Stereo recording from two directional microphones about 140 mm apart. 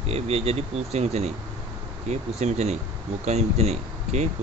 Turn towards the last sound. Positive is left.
turn(degrees=-55)  # may be behind; listen again after turning